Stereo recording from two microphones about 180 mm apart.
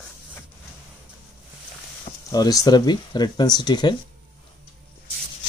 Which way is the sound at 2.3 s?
20° left (ahead or behind).